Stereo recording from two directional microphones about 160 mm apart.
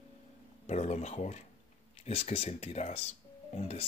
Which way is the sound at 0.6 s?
45° left (ahead or behind).